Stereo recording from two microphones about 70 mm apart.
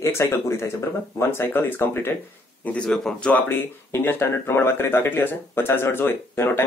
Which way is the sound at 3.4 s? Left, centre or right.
Left.